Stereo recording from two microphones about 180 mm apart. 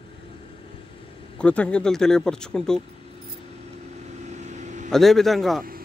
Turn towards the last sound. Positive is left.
turn(degrees=0)  # may be behind; listen again after turning